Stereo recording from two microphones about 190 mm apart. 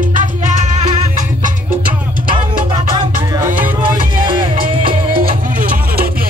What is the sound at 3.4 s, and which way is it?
Music, 10° right (ahead or behind).